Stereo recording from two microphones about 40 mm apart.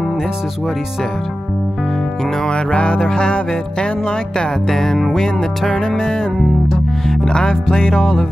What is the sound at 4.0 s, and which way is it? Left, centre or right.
Music, left.